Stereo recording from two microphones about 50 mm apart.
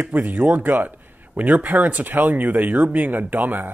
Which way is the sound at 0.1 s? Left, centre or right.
Right.